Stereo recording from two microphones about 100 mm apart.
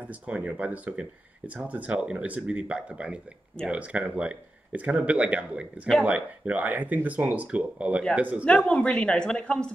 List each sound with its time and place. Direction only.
0.1 s speech: 15° right (ahead or behind)
8.5 s speech: 10° left (ahead or behind)